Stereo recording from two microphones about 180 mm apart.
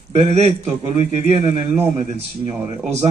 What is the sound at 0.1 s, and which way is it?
A man's voice, 35° right (ahead or behind).